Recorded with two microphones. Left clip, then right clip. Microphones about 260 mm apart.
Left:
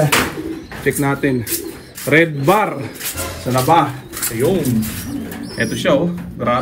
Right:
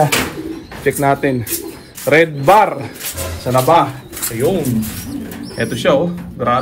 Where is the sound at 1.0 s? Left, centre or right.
Centre.